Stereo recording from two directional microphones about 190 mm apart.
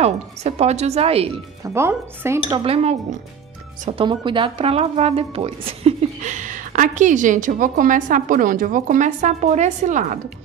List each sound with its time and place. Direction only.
0.0 s speech: 35° right (ahead or behind)
1.6 s speech: 15° right (ahead or behind)
2.5 s speech: 30° right (ahead or behind)
4.0 s speech: 25° right (ahead or behind)